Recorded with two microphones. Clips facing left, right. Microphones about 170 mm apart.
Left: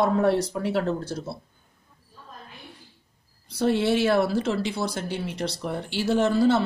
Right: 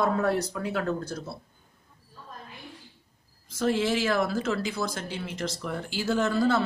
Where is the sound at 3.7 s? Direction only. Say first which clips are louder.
Left 4 dB; 90° right.